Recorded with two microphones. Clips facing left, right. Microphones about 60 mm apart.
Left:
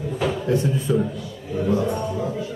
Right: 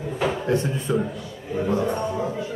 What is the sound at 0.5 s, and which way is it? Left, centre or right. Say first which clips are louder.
A man's voice: left 2 dB; centre.